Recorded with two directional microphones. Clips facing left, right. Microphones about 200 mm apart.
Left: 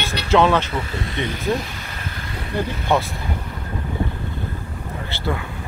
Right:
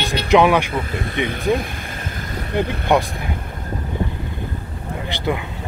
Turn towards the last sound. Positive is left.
turn(degrees=-15)  # may be behind; listen again after turning